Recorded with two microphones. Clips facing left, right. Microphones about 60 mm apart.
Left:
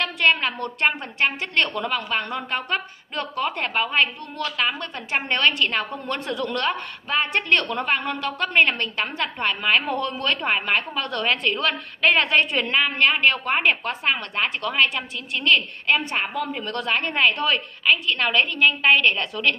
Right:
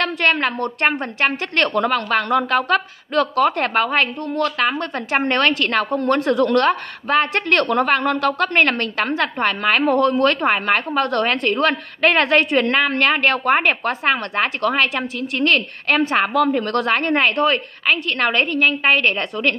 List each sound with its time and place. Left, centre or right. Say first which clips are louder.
0.0 s a woman's voice: right 3 dB; right